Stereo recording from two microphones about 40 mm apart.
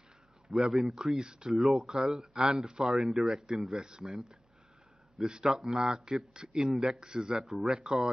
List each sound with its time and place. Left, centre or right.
0.5 s speech: centre
4.0 s a man's voice: centre